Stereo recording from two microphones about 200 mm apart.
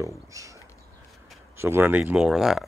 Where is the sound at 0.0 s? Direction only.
15° right (ahead or behind).